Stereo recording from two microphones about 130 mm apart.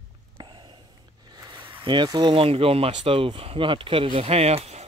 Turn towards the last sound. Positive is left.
turn(degrees=-55)  # may be behind; listen again after turning